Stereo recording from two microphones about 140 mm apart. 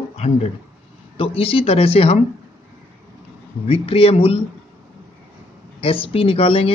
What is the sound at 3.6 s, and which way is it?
Speech, 45° left (ahead or behind).